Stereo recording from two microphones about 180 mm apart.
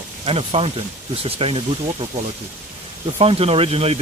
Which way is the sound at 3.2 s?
30° right (ahead or behind).